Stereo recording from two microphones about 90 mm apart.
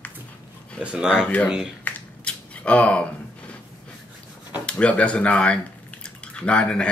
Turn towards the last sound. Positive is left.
turn(degrees=10)  # may be behind; listen again after turning